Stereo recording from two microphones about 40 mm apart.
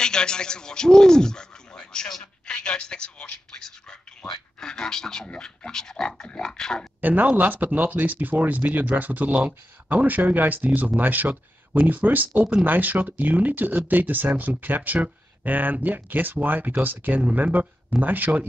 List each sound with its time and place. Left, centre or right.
0.0 s a woman's voice: centre
4.6 s speech: centre
5.3 s a woman's voice: left
5.7 s speech: centre
7.0 s speech: right